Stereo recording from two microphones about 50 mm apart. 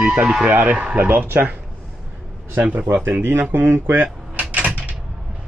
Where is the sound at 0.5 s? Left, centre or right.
Right.